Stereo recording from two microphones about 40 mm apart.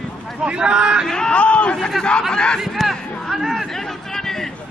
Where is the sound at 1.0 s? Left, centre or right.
Centre.